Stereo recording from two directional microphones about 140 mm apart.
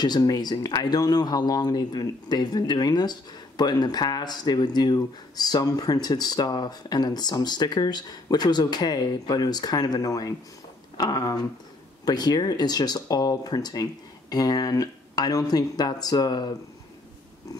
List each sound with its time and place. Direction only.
0.0 s speech: 30° left (ahead or behind)